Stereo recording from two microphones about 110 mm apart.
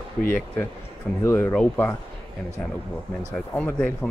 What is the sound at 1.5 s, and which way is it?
Speech, 10° left (ahead or behind).